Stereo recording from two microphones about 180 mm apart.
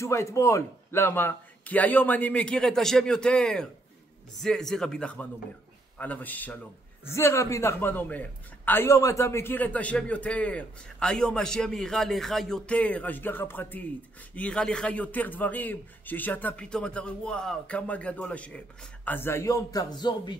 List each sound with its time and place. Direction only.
0.0 s a man's voice: 15° left (ahead or behind)